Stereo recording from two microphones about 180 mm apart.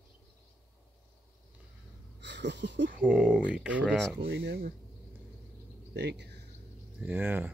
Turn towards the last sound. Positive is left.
turn(degrees=-10)  # may be behind; listen again after turning